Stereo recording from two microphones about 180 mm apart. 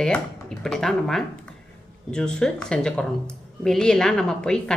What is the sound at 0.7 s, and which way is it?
A woman's voice, centre (ahead or behind).